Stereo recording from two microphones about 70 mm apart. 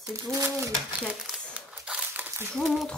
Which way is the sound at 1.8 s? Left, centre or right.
Centre.